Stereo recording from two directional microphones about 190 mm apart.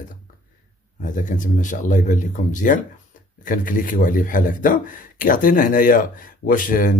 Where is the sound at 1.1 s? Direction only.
40° left (ahead or behind).